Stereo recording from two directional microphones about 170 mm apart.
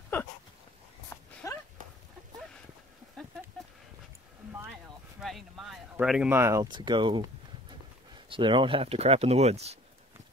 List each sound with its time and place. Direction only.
1.1 s a sound: 15° left (ahead or behind)
5.2 s speech: centre (ahead or behind); by 7.2 s 25° right (ahead or behind)
8.3 s speech: 30° right (ahead or behind)